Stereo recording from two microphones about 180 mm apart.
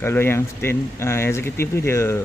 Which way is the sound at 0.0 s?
15° left (ahead or behind).